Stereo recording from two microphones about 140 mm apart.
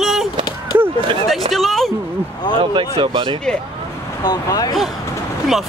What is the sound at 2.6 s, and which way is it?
Speech, 35° right (ahead or behind).